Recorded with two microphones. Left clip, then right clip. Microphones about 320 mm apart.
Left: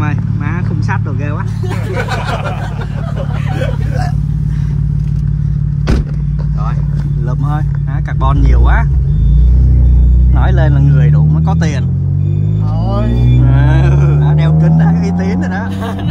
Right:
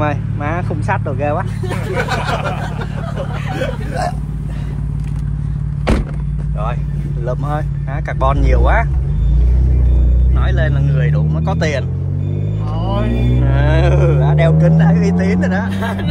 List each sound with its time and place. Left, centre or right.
8.2 s speech: centre
10.8 s a sound: centre
11.4 s vehicle: centre
14.3 s music: centre